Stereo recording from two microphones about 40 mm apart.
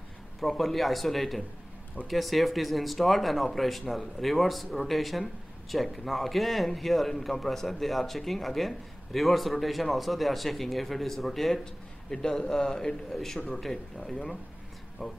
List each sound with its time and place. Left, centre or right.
0.4 s a man's voice: centre
11.6 s a man's voice: centre